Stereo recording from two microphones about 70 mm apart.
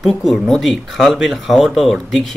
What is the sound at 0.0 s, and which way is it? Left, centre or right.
Speech, centre.